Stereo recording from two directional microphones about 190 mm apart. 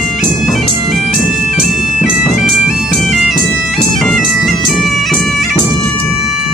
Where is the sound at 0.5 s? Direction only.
Centre (ahead or behind).